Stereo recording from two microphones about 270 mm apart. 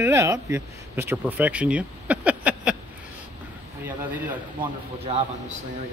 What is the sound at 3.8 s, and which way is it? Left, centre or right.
Speech, centre.